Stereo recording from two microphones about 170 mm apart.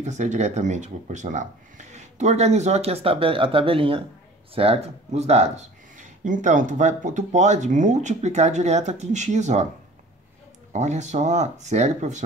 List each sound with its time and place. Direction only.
0.0 s speech: 45° right (ahead or behind)
10.7 s speech: 45° right (ahead or behind)